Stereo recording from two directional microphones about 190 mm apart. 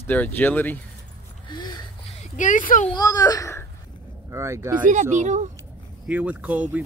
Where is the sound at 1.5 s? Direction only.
20° left (ahead or behind).